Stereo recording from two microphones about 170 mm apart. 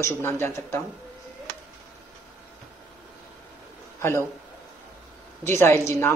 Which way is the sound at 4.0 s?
15° left (ahead or behind).